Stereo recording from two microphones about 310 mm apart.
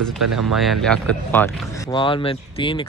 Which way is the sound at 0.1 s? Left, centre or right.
Centre.